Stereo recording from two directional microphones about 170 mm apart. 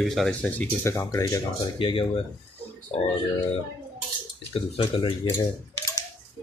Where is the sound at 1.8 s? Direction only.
30° left (ahead or behind).